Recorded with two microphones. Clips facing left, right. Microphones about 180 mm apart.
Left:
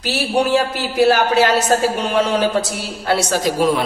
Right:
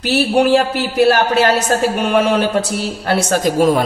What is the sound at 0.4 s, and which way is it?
A man's voice, 60° right (ahead or behind).